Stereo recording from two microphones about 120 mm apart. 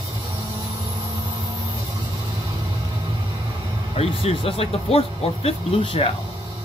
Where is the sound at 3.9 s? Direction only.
55° left (ahead or behind).